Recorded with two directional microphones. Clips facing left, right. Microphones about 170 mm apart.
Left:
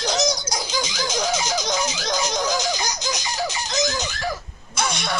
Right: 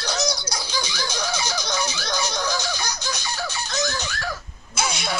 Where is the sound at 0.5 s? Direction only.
20° left (ahead or behind).